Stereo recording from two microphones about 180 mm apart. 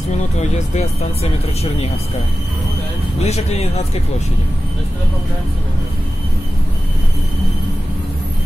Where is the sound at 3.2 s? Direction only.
35° left (ahead or behind).